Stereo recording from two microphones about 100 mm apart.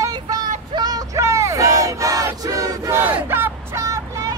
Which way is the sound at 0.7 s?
40° right (ahead or behind).